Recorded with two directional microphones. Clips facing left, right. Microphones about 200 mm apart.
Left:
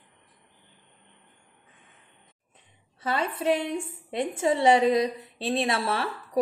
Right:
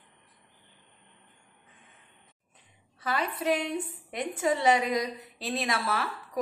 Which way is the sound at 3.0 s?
25° left (ahead or behind).